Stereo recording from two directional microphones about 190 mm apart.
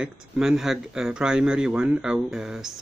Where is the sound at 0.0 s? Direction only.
Centre (ahead or behind).